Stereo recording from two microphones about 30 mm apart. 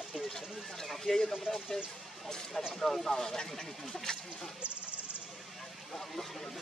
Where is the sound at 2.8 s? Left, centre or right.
Centre.